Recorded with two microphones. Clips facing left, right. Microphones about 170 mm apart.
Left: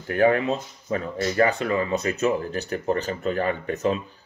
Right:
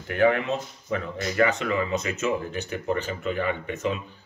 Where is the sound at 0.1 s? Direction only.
35° left (ahead or behind).